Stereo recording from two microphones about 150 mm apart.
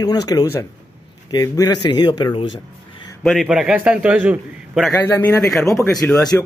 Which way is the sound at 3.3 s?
Centre (ahead or behind).